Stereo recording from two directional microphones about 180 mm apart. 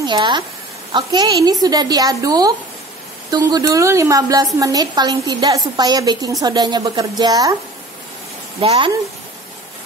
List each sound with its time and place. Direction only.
0.0 s a woman's voice: 25° right (ahead or behind)
8.5 s a woman's voice: 30° right (ahead or behind)